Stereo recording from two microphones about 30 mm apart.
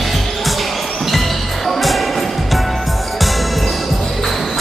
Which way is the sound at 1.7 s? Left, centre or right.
Centre.